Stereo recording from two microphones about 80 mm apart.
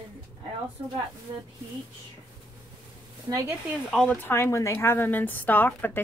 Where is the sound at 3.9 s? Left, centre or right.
Centre.